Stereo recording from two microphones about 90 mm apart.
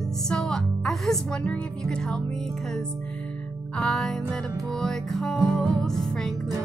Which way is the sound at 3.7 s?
5° left (ahead or behind).